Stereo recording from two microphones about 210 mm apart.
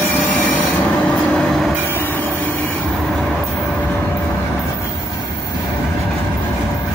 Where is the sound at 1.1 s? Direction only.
5° left (ahead or behind).